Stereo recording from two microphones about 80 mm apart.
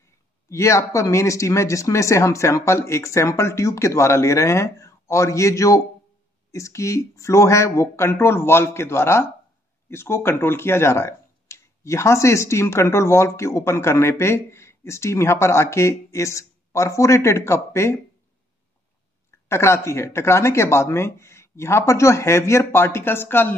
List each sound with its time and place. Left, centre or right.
0.5 s speech: left
19.5 s speech: left